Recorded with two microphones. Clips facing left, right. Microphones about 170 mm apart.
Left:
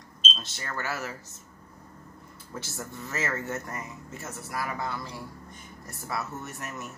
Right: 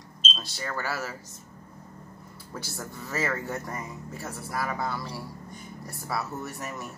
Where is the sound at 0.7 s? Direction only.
Centre (ahead or behind).